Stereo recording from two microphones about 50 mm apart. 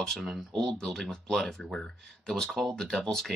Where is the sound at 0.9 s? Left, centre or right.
Centre.